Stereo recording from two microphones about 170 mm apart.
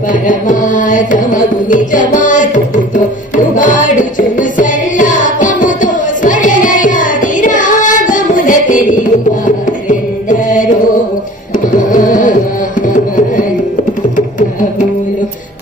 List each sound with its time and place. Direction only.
0.1 s carnatic music: 50° left (ahead or behind)
3.5 s music: 50° left (ahead or behind)
11.9 s music: 50° left (ahead or behind)
12.8 s carnatic music: 50° left (ahead or behind)